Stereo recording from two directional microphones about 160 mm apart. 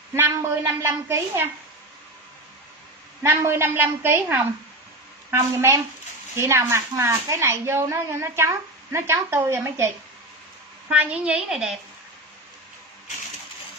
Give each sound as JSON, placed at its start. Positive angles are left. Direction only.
{"t": 0.1, "sound": "a woman's voice", "side_deg": -15}
{"t": 3.2, "sound": "a woman's voice", "side_deg": -15}
{"t": 10.9, "sound": "a woman's voice", "side_deg": -10}